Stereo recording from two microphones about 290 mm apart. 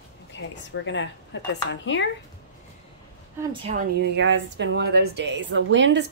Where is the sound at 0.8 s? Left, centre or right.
Left.